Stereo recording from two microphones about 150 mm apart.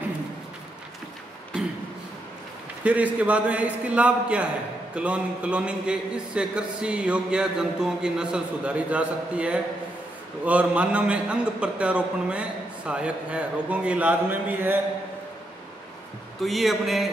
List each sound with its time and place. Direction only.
2.8 s speech: 10° right (ahead or behind)
16.3 s a man's voice: centre (ahead or behind)